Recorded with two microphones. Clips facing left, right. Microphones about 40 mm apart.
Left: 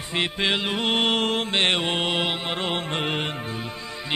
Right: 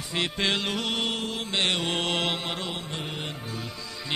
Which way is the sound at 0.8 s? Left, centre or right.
Left.